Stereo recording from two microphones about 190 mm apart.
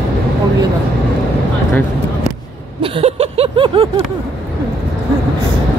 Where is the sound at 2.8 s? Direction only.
30° right (ahead or behind).